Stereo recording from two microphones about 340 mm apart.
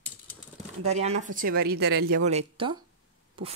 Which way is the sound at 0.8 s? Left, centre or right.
Centre.